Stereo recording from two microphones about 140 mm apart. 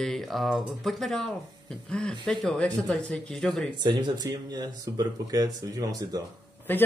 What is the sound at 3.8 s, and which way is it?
Speech, 30° right (ahead or behind).